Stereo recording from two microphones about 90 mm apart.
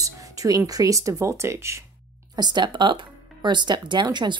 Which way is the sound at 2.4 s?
55° right (ahead or behind).